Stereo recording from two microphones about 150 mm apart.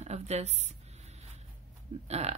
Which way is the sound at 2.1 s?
45° right (ahead or behind).